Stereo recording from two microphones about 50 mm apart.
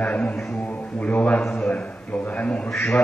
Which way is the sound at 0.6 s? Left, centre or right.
Left.